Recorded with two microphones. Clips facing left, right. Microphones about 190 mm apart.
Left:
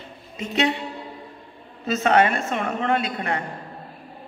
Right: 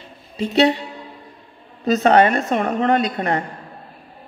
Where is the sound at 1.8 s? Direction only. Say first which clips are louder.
Right 5 dB; 35° right (ahead or behind).